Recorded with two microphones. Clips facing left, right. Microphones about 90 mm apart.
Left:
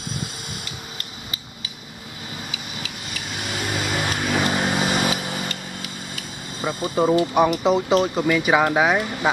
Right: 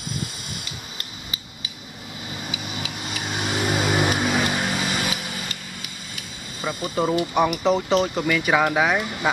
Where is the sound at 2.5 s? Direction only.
20° right (ahead or behind).